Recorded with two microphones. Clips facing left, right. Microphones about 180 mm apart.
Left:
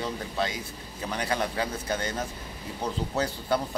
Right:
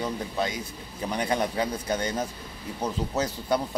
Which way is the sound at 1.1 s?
20° right (ahead or behind).